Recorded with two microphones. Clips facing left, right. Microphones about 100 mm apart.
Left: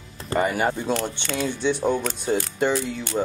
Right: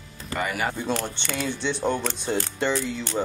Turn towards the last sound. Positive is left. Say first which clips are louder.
# left 2 dB
turn(degrees=10)  # may be behind; listen again after turning